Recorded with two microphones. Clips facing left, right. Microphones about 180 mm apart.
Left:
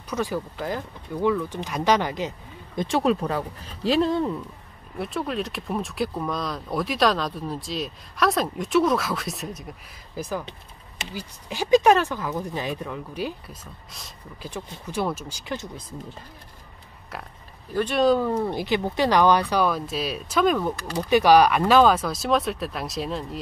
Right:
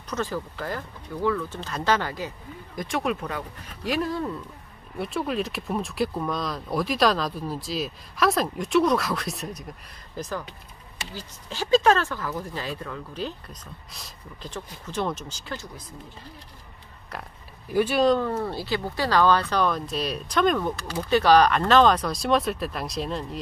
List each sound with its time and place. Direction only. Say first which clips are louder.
0.1 s speech: left 2 dB; 15° left (ahead or behind)
4.9 s speech: even; centre (ahead or behind)
13.9 s speech: left 1 dB; centre (ahead or behind)
14.5 s speech: left 2 dB; 10° left (ahead or behind)
17.1 s speech: even; 5° left (ahead or behind)
18.3 s speech: left 3 dB; 15° left (ahead or behind); by 23.4 s centre (ahead or behind)